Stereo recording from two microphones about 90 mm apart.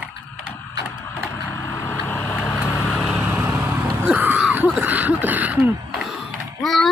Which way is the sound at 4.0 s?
20° right (ahead or behind).